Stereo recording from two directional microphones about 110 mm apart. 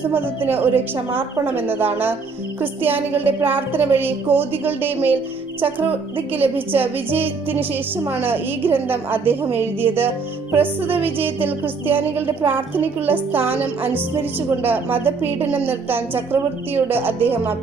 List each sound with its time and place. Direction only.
0.1 s a woman's voice: 20° right (ahead or behind)
2.6 s music: 20° right (ahead or behind)
6.3 s music: 15° right (ahead or behind)
8.0 s a woman's voice: 20° right (ahead or behind)
9.6 s music: 20° right (ahead or behind)
14.6 s a woman's voice: 20° right (ahead or behind)